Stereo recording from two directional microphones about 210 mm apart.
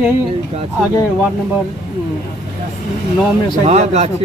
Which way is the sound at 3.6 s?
30° right (ahead or behind).